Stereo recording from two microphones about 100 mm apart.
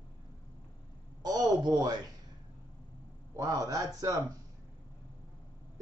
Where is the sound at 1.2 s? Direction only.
40° right (ahead or behind).